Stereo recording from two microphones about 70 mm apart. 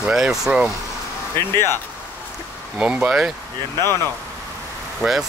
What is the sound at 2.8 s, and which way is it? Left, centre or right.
Speech, centre.